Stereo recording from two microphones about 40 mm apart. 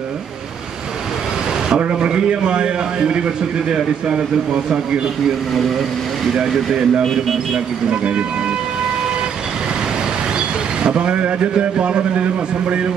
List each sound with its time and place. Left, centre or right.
1.8 s a man's voice: right
6.3 s speech: centre
7.9 s speech: right
10.8 s a man's voice: right